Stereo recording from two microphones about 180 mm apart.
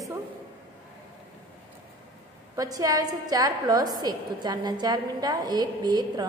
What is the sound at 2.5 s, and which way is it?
A woman's voice, 20° right (ahead or behind).